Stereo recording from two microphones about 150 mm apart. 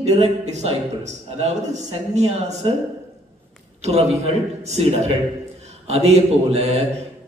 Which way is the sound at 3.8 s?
45° right (ahead or behind).